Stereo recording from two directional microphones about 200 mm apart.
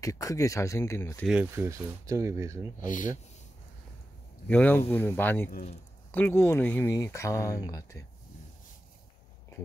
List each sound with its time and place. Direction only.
0.0 s speech: 15° left (ahead or behind)
1.2 s speech: 5° right (ahead or behind)
2.8 s speech: 40° left (ahead or behind)
4.5 s speech: 10° left (ahead or behind)
5.5 s speech: 40° left (ahead or behind)
6.1 s speech: 10° left (ahead or behind)